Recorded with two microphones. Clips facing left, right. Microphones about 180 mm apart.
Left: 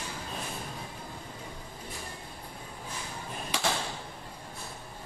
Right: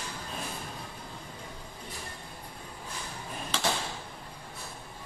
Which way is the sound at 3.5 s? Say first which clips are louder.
Even; 15° left (ahead or behind).